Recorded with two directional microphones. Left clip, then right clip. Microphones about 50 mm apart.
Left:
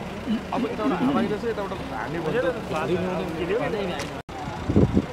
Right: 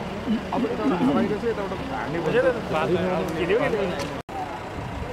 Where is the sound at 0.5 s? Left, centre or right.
Left.